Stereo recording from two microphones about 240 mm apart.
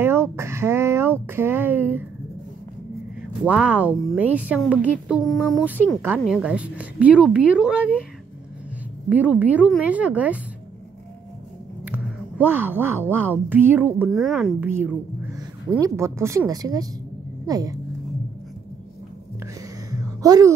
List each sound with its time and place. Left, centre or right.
0.0 s speech: centre
3.4 s a woman's voice: centre
9.1 s a woman's voice: centre
11.8 s speech: centre
19.4 s music: centre